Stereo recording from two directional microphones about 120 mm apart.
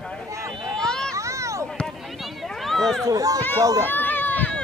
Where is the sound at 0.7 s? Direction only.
5° left (ahead or behind).